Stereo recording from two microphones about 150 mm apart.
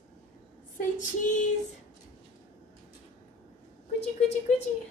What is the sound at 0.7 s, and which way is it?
Female singing, 60° left (ahead or behind).